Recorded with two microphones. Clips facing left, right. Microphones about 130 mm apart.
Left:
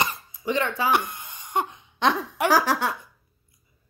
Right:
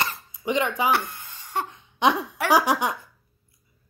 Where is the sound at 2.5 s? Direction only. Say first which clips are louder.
Right 3 dB; 15° right (ahead or behind).